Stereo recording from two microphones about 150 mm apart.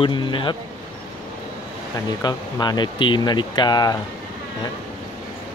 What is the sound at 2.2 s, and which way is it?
Speech, 25° left (ahead or behind).